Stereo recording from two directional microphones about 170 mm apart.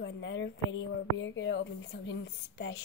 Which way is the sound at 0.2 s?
90° left.